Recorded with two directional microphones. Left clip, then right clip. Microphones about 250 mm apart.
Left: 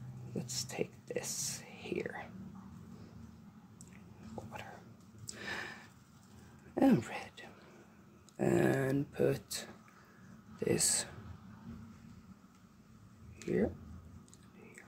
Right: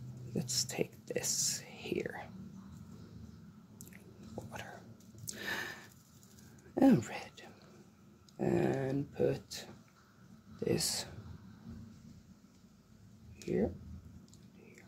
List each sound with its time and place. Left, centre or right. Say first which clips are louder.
0.3 s speech: right 4 dB; centre
4.5 s dog: right 2 dB; centre
5.2 s sniff: right 3 dB; centre
6.7 s whispering: right 2 dB; centre
8.4 s speech: left 2 dB; centre